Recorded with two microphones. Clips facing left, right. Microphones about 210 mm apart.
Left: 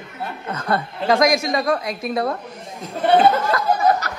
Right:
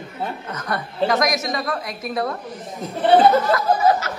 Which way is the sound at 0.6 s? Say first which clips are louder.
Left 1 dB; 30° left (ahead or behind).